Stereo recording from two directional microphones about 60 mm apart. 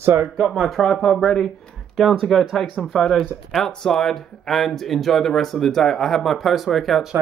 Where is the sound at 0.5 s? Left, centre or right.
Centre.